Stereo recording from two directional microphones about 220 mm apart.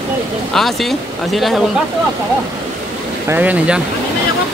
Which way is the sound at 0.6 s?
Centre (ahead or behind).